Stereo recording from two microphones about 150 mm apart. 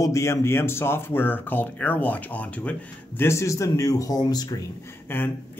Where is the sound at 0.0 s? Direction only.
20° left (ahead or behind).